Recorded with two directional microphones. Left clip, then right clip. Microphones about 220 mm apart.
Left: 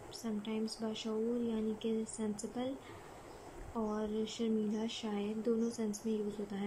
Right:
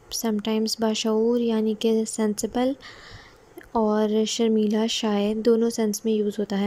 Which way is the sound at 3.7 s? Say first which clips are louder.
Right 16 dB; 40° right (ahead or behind).